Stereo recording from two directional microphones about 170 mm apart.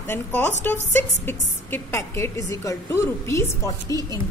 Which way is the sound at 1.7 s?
15° left (ahead or behind).